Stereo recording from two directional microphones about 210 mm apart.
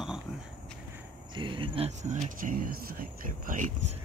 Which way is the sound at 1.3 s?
25° right (ahead or behind).